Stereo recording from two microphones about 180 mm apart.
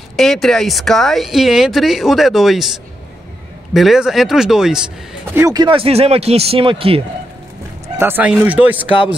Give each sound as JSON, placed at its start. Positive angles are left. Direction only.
{"t": 0.1, "sound": "speech", "side_deg": 0}
{"t": 3.7, "sound": "speech", "side_deg": 0}
{"t": 5.3, "sound": "speech", "side_deg": -15}
{"t": 5.6, "sound": "speech", "side_deg": -30}
{"t": 8.0, "sound": "speech", "side_deg": -10}